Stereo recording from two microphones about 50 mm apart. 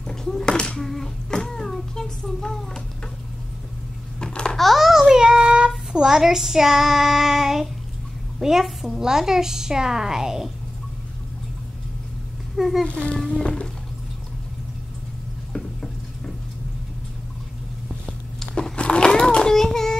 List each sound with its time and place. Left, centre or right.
0.0 s speech: centre
4.2 s babbling: left
4.5 s babbling: centre
5.9 s a woman's voice: centre
12.5 s a child's voice: centre
12.8 s a child's voice: left
15.5 s a sound: left
18.4 s a sound: centre